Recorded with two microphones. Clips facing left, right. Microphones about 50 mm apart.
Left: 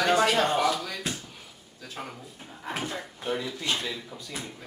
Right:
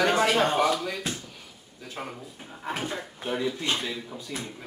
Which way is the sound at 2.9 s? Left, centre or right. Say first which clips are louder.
Even; centre.